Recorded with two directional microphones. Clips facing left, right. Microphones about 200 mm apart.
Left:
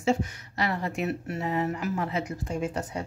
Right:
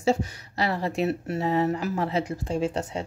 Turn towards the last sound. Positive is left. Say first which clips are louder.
# right 4 dB
turn(degrees=-30)  # may be behind; listen again after turning